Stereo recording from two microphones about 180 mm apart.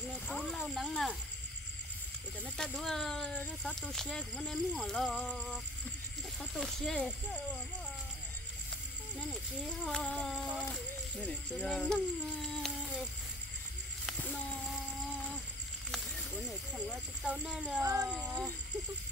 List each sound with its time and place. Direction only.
0.3 s speech: centre (ahead or behind)
2.4 s speech: 5° left (ahead or behind)
9.8 s speech: 5° left (ahead or behind)
14.2 s speech: 5° left (ahead or behind)
16.4 s speech: 5° right (ahead or behind)
17.8 s speech: 15° right (ahead or behind)